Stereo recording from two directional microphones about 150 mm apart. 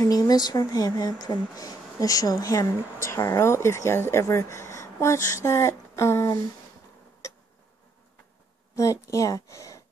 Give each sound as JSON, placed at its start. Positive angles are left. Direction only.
{"t": 0.0, "sound": "speech", "side_deg": 25}
{"t": 9.0, "sound": "speech", "side_deg": 20}